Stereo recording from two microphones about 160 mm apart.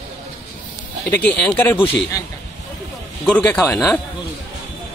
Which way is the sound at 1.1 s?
10° left (ahead or behind).